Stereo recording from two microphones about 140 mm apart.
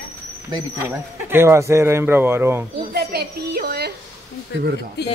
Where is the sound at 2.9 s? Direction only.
90° right.